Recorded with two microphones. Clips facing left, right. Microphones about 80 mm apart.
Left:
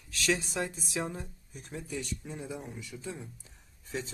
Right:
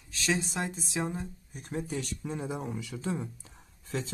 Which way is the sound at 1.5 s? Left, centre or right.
Right.